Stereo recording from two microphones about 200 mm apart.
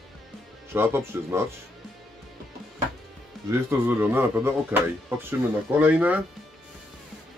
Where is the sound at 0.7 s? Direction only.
10° right (ahead or behind).